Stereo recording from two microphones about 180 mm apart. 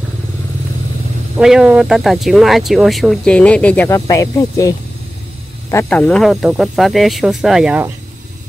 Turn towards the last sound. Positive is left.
turn(degrees=-5)  # may be behind; listen again after turning